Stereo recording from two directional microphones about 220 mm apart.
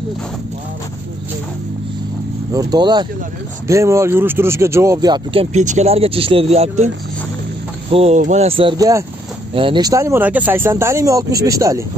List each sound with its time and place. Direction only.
2.5 s speech: 15° right (ahead or behind)
7.9 s speech: 30° right (ahead or behind)